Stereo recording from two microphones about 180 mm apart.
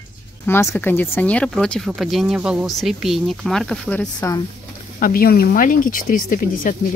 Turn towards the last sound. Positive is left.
turn(degrees=50)  # may be behind; listen again after turning